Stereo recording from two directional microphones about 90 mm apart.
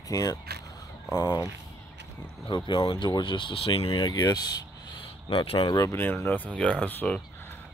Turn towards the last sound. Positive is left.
turn(degrees=20)  # may be behind; listen again after turning